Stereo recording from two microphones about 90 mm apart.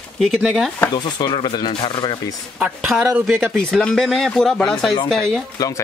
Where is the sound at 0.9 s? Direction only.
55° left (ahead or behind).